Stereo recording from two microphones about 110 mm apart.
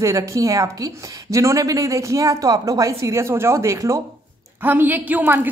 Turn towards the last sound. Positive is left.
turn(degrees=-15)  # may be behind; listen again after turning